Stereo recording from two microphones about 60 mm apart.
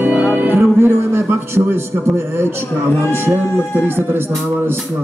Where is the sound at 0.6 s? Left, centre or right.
Right.